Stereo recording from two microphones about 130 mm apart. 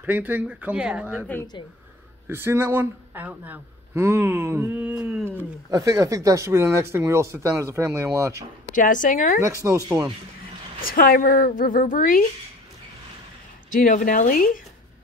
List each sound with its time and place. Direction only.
0.0 s speech: 15° right (ahead or behind)
2.2 s speech: 20° right (ahead or behind)
5.7 s speech: 25° right (ahead or behind)
8.7 s a woman's voice: 90° left
9.6 s speech: 20° right (ahead or behind)
10.8 s a woman's voice: 90° left
13.7 s a woman's voice: 90° left